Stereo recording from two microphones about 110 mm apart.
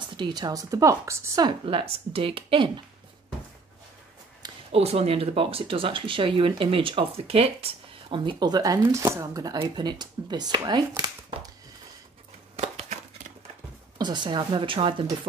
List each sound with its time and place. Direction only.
0.0 s a woman's voice: 45° right (ahead or behind); by 1.4 s 25° right (ahead or behind)
1.7 s speech: 55° right (ahead or behind)
4.7 s speech: 70° right (ahead or behind)
8.2 s a woman's voice: 45° right (ahead or behind)
12.5 s a sound: 90° right
13.9 s speech: 40° right (ahead or behind)